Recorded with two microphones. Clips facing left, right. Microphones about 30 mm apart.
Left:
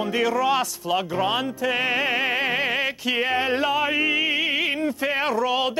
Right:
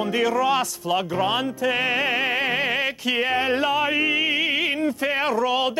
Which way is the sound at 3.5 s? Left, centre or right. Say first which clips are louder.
Right 1 dB; left.